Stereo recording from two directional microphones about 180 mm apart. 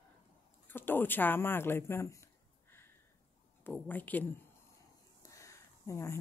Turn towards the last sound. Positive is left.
turn(degrees=15)  # may be behind; listen again after turning